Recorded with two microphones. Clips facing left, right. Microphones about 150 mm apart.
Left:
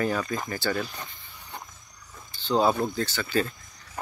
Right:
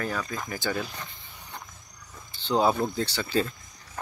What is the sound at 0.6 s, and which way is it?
Speech, 15° right (ahead or behind).